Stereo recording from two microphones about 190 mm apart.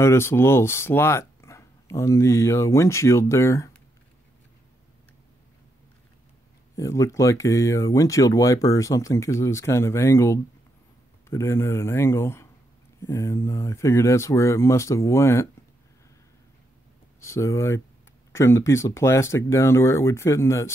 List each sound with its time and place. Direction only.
0.0 s speech: 15° left (ahead or behind)
6.8 s speech: 15° left (ahead or behind)
17.2 s speech: 15° left (ahead or behind)